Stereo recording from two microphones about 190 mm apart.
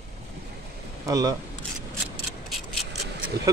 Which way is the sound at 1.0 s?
20° right (ahead or behind).